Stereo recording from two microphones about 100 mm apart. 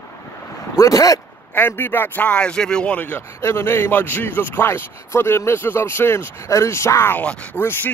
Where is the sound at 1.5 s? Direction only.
20° left (ahead or behind).